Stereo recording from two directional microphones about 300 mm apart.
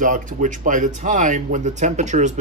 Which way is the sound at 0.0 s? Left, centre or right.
Right.